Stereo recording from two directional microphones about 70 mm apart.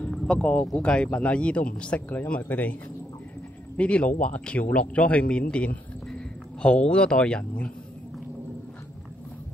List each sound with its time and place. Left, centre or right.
0.3 s a man's voice: centre